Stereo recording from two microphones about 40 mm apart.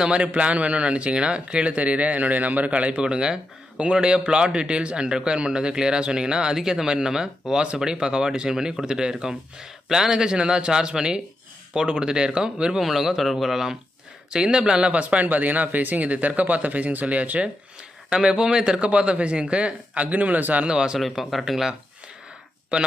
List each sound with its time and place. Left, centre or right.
0.1 s a man's voice: right
1.8 s a man's voice: right; by 12.7 s centre
12.7 s a man's voice: centre
14.3 s a man's voice: centre
14.9 s speech: right
15.2 s speech: right
18.2 s a man's voice: right
20.6 s a man's voice: centre
21.0 s a man's voice: centre